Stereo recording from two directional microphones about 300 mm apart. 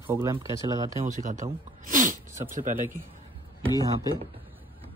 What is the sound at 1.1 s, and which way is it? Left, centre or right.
Speech, right.